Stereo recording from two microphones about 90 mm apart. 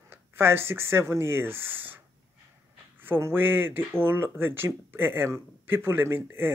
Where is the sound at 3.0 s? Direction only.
25° right (ahead or behind).